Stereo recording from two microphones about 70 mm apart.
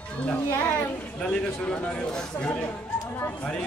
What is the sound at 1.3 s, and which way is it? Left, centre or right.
Speech, centre.